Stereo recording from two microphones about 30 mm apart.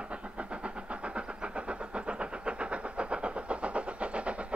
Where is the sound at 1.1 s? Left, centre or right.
Right.